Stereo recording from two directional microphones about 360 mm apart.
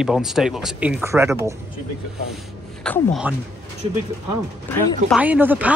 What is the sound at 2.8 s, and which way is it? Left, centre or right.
Speech, centre.